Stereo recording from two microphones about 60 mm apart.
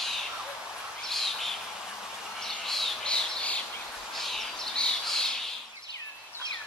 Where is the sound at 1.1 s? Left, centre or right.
Centre.